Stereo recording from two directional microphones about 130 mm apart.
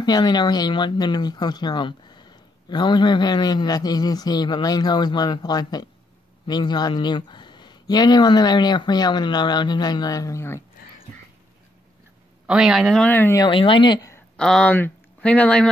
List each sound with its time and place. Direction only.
0.0 s speech: 30° left (ahead or behind)
12.4 s a man's voice: 5° right (ahead or behind)
13.0 s speech: 15° left (ahead or behind)
13.4 s speech: 40° left (ahead or behind)
14.3 s speech: 5° left (ahead or behind)